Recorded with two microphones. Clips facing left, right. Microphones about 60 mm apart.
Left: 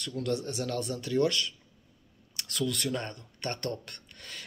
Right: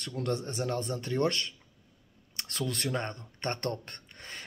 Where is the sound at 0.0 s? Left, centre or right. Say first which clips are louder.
Left 1 dB; right.